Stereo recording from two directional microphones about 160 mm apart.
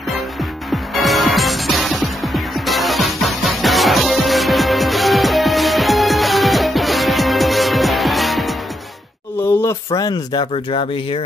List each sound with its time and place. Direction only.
0.1 s music: centre (ahead or behind)
9.4 s a sound: 15° left (ahead or behind)
9.9 s speech: 25° left (ahead or behind)
10.4 s speech: 35° left (ahead or behind)